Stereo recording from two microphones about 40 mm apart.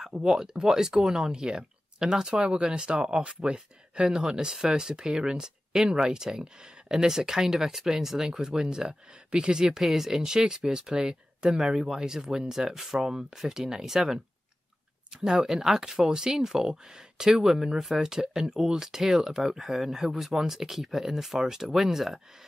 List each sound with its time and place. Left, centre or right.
0.0 s speech: centre
15.4 s speech: centre